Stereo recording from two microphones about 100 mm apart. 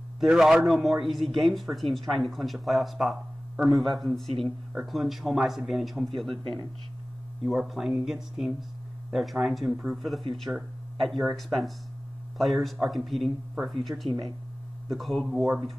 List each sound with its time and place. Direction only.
0.2 s speech: 5° right (ahead or behind)
6.3 s speech: 65° right (ahead or behind)
7.4 s speech: 5° right (ahead or behind)